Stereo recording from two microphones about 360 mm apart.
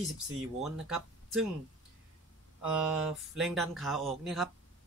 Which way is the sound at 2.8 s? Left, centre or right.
Centre.